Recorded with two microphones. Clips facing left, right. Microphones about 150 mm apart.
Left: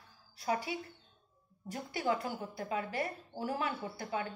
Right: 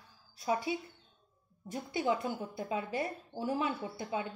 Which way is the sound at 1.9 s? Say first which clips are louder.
Right 2 dB; 20° right (ahead or behind).